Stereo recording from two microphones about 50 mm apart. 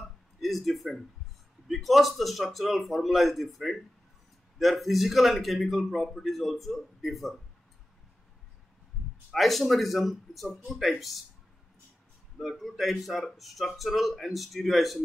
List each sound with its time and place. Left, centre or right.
0.0 s a sound: centre
1.7 s a man's voice: centre
9.3 s a man's voice: centre
12.4 s a man's voice: centre